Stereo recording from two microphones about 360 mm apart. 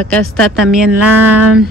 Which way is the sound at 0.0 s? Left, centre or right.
Centre.